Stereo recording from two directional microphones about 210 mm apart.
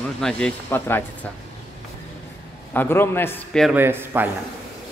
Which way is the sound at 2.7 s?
10° left (ahead or behind).